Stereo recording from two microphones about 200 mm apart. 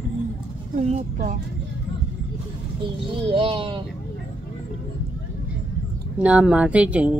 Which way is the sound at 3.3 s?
25° right (ahead or behind).